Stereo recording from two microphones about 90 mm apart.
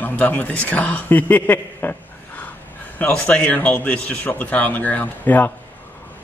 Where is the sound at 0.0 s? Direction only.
20° left (ahead or behind).